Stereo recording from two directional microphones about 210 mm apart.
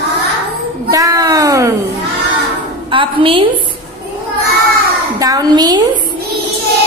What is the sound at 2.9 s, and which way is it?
Speech, 25° right (ahead or behind).